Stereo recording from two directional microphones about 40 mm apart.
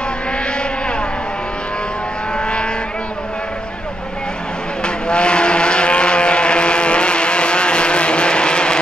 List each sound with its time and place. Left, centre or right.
2.3 s vehicle: left
4.8 s vehicle: left